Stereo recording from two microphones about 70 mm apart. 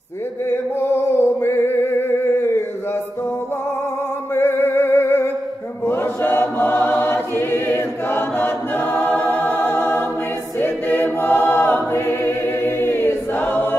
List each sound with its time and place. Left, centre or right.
0.5 s music: left
4.4 s music: left
5.9 s choir: left